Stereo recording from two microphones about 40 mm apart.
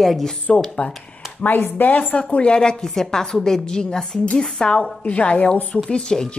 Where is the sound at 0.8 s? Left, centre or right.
Left.